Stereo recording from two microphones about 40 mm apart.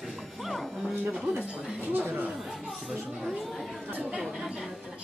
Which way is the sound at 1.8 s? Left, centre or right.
Right.